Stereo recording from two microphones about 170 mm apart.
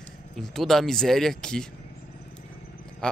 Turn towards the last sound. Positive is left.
turn(degrees=5)  # may be behind; listen again after turning